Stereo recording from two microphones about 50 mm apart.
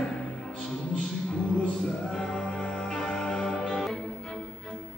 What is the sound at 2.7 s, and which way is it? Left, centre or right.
Music, centre.